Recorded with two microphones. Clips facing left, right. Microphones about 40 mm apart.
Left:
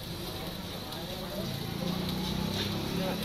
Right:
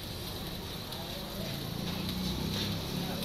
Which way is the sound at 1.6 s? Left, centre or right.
Left.